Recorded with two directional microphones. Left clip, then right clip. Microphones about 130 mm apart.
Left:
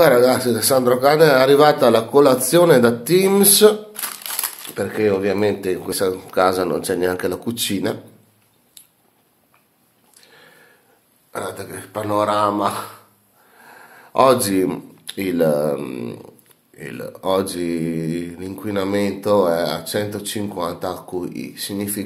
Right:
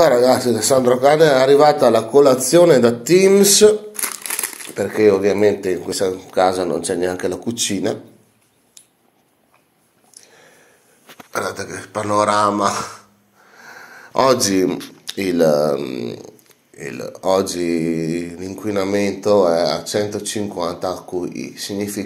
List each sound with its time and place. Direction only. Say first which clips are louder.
0.0 s a man's voice: right 1 dB; 5° left (ahead or behind)
4.7 s a man's voice: right 4 dB; 5° left (ahead or behind); by 8.0 s 25° left (ahead or behind)
10.2 s a sound: left 2 dB; 20° left (ahead or behind)
11.3 s speech: right 4 dB; 20° right (ahead or behind)
13.6 s a sound: right 5 dB; 20° right (ahead or behind)
14.1 s speech: left 1 dB; 5° left (ahead or behind)
14.4 s a man's voice: right 3 dB; 20° left (ahead or behind)